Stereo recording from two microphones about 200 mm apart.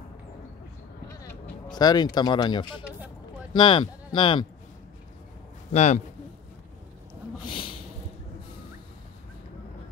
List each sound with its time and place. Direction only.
1.7 s speech: 20° left (ahead or behind)
5.7 s a man's voice: 35° left (ahead or behind)
7.4 s snort: 25° left (ahead or behind)